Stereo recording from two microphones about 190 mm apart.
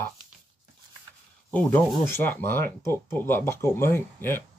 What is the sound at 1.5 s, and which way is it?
Speech, 10° left (ahead or behind).